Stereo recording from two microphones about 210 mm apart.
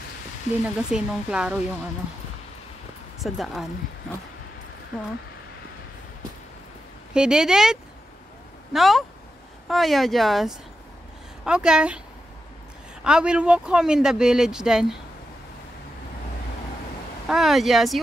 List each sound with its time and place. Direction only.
0.5 s speech: 35° left (ahead or behind)
0.9 s speech: 5° right (ahead or behind)
3.2 s speech: centre (ahead or behind)
7.2 s speech: 5° right (ahead or behind)
13.0 s speech: 5° right (ahead or behind)
17.3 s speech: centre (ahead or behind)